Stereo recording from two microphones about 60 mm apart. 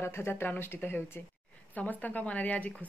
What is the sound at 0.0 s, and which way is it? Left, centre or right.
Speech, left.